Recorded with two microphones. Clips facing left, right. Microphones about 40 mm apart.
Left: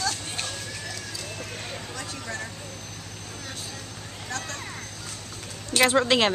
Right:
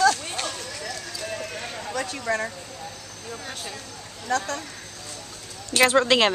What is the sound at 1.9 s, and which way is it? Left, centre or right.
Speech, right.